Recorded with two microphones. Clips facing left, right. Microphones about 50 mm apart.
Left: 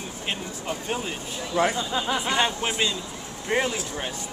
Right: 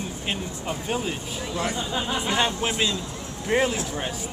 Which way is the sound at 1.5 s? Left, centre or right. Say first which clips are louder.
Left 6 dB; left.